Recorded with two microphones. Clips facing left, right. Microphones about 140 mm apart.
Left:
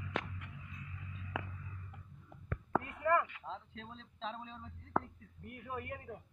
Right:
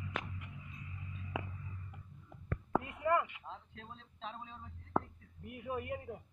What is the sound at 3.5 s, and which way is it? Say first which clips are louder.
Speech: left 3 dB; 90° left.